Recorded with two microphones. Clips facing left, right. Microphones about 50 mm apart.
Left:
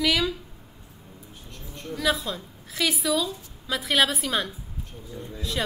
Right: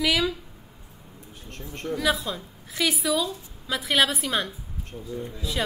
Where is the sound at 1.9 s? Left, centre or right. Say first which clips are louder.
Even; centre.